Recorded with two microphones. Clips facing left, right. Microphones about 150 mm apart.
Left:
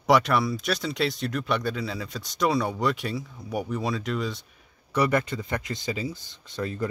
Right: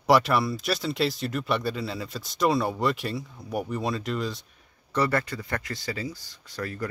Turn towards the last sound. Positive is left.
turn(degrees=20)  # may be behind; listen again after turning